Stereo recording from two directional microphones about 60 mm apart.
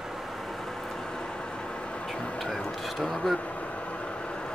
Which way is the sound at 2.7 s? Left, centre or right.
Centre.